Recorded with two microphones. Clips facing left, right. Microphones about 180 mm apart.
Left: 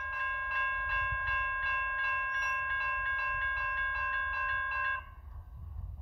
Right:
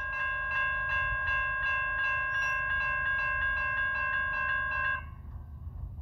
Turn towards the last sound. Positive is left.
turn(degrees=-55)  # may be behind; listen again after turning